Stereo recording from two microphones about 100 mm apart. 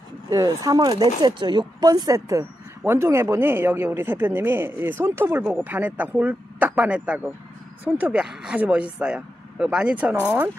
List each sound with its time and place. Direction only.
0.3 s speech: 35° right (ahead or behind); by 10.5 s 15° right (ahead or behind)